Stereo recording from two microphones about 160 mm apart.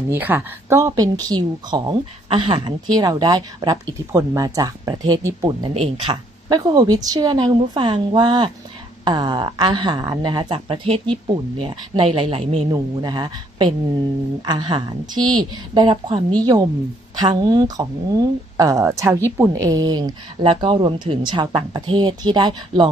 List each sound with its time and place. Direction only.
0.1 s a woman's voice: 10° right (ahead or behind); by 2.7 s 35° right (ahead or behind)
2.9 s a woman's voice: 25° right (ahead or behind); by 12.6 s 40° right (ahead or behind)
12.7 s a woman's voice: 25° right (ahead or behind)